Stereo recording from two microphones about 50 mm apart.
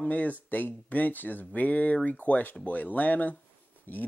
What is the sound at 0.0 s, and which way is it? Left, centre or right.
Speech, left.